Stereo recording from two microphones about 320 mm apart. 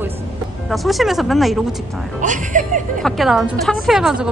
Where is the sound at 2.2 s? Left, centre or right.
Right.